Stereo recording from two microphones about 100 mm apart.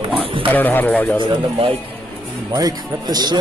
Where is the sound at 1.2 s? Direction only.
65° right (ahead or behind).